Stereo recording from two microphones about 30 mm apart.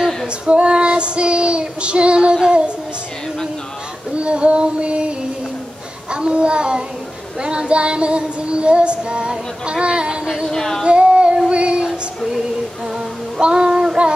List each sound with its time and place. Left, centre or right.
0.5 s female singing: right
2.4 s music: right
4.2 s female singing: right
6.1 s female singing: right
10.5 s female singing: centre
10.9 s female singing: right
11.4 s child singing: right
13.4 s child singing: right